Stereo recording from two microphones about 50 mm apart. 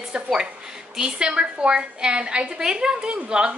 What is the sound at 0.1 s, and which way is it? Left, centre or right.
A woman's voice, centre.